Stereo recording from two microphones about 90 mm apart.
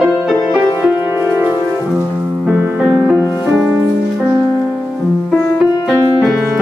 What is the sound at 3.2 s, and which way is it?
Music, 30° left (ahead or behind).